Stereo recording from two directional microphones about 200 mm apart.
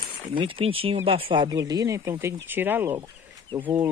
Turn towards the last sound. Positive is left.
turn(degrees=-10)  # may be behind; listen again after turning